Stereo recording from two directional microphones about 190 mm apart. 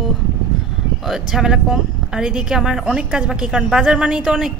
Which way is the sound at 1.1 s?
5° right (ahead or behind).